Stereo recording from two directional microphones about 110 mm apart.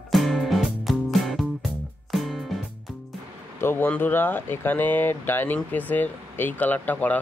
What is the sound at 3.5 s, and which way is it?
Speech, 20° left (ahead or behind).